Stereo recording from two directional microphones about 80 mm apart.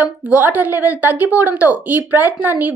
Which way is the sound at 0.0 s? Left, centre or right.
Centre.